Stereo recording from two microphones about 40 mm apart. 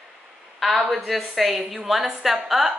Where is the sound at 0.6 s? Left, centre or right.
Centre.